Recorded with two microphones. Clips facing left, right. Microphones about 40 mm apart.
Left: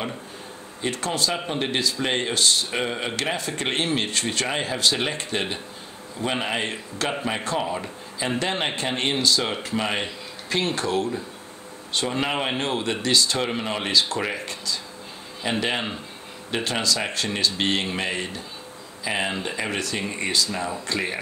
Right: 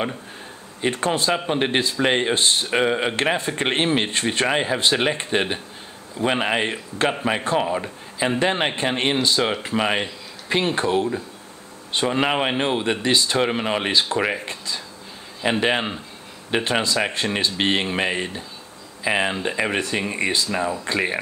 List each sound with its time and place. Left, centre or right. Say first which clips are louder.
0.7 s speech: right 4 dB; right
2.8 s speech: right 6 dB; centre